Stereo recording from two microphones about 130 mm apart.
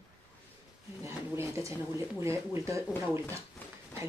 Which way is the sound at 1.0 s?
20° right (ahead or behind).